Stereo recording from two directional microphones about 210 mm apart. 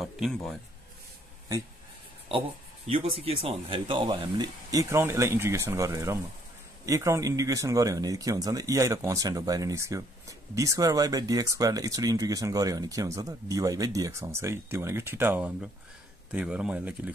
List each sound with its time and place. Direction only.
0.0 s speech: centre (ahead or behind)
2.9 s speech: 25° right (ahead or behind); by 17.1 s 5° right (ahead or behind)